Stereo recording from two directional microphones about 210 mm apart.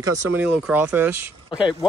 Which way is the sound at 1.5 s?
20° left (ahead or behind).